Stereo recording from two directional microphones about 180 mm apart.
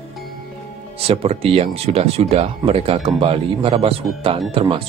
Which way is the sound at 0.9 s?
35° right (ahead or behind).